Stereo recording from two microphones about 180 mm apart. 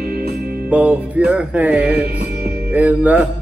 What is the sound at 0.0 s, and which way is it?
Music, 55° right (ahead or behind).